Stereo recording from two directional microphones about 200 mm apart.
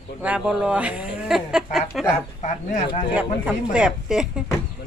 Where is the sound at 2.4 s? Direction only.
35° left (ahead or behind).